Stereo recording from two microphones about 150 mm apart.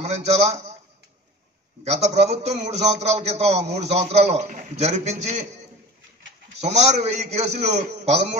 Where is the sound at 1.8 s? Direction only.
45° right (ahead or behind).